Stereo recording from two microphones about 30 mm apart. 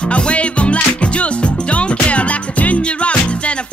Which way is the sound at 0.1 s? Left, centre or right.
Left.